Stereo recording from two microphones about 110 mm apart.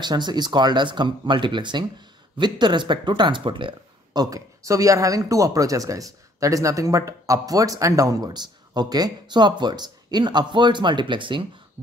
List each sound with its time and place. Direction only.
0.0 s speech: 40° right (ahead or behind)